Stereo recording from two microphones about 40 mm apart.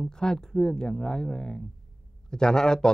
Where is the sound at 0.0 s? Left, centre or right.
Centre.